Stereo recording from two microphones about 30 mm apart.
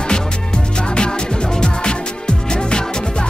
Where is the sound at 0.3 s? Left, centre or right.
Left.